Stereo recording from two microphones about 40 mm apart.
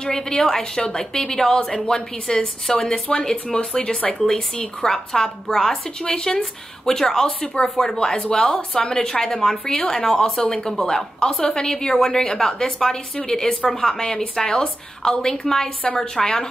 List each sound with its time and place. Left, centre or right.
0.0 s a woman's voice: centre
8.4 s speech: left
8.7 s a woman's voice: centre